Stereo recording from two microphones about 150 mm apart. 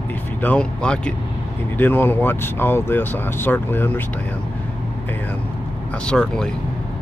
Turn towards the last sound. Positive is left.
turn(degrees=5)  # may be behind; listen again after turning